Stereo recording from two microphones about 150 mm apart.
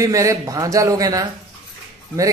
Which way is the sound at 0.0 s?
20° right (ahead or behind).